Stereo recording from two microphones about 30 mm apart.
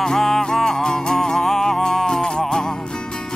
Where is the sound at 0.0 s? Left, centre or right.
Centre.